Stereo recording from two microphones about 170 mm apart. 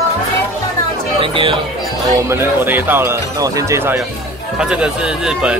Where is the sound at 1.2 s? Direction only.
30° right (ahead or behind).